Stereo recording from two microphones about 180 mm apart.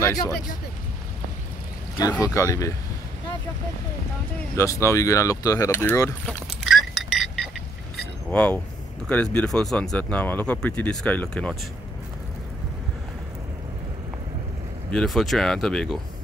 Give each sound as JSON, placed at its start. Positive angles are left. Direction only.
{"t": 0.0, "sound": "speech", "side_deg": 20}
{"t": 2.0, "sound": "speech", "side_deg": 20}
{"t": 4.6, "sound": "speech", "side_deg": 15}
{"t": 6.4, "sound": "a sound", "side_deg": 0}
{"t": 9.1, "sound": "speech", "side_deg": 5}
{"t": 14.9, "sound": "speech", "side_deg": 5}